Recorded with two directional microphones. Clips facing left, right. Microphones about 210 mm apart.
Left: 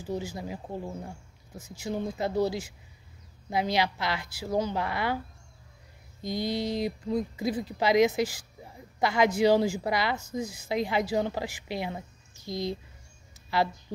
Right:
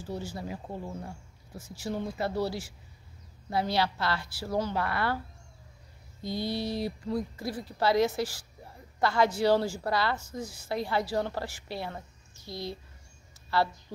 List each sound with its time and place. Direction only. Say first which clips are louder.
0.0 s speech: left 3 dB; 15° left (ahead or behind)
1.7 s speech: left 2 dB; 15° left (ahead or behind)
6.2 s speech: left 2 dB; 15° left (ahead or behind)
13.3 s a sound: left 1 dB; 15° left (ahead or behind)